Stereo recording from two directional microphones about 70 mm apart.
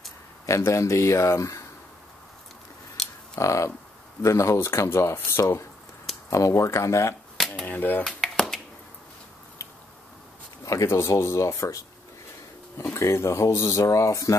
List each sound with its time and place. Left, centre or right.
0.5 s speech: left
3.0 s camera: centre
3.3 s speech: left
7.3 s a sound: centre
7.6 s speech: left
8.2 s finger snapping: centre
10.6 s speech: left
12.9 s speech: left